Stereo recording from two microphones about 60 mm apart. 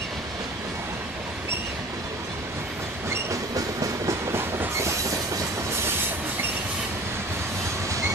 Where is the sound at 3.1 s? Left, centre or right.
Right.